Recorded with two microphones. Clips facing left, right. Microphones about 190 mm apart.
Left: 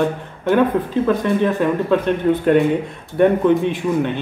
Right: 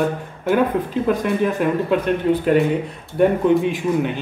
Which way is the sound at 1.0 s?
10° right (ahead or behind).